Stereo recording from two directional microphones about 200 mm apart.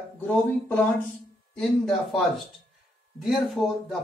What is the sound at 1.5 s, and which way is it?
Speech, centre (ahead or behind).